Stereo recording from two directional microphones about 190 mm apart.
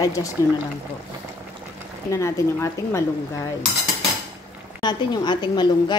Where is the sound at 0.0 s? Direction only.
20° left (ahead or behind).